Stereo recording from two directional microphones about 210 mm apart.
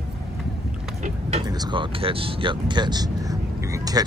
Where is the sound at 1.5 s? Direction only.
20° right (ahead or behind).